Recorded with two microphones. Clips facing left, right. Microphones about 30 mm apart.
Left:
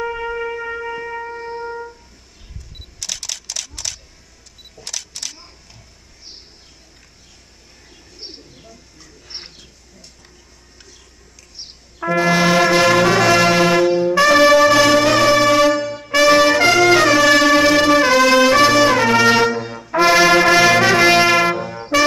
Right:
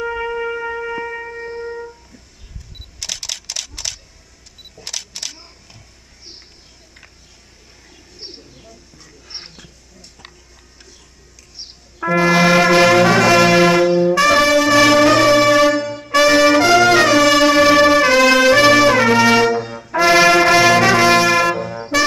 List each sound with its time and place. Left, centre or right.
0.0 s shofar: centre
3.0 s a sound: centre
4.7 s single-lens reflex camera: centre
8.2 s bird: centre
12.0 s brass instrument: centre
14.8 s brass instrument: centre
21.3 s brass instrument: centre
21.5 s trumpet: centre